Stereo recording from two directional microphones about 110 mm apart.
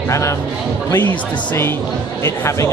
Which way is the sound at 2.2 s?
25° left (ahead or behind).